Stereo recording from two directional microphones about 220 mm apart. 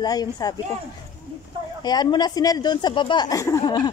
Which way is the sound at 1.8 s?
20° left (ahead or behind).